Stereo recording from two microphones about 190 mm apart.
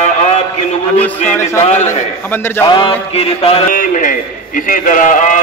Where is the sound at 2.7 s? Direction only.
30° left (ahead or behind).